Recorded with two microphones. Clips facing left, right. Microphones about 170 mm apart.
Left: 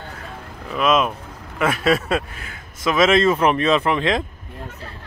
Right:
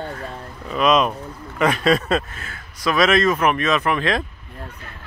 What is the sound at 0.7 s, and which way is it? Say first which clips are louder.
Speech: right 1 dB; centre (ahead or behind).